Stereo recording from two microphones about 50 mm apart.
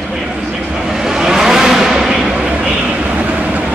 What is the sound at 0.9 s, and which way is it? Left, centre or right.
Vehicle, centre.